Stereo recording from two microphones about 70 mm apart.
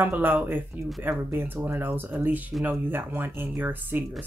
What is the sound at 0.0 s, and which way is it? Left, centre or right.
Speech, right.